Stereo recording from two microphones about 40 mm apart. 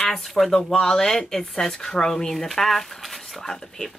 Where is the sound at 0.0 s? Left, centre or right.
Centre.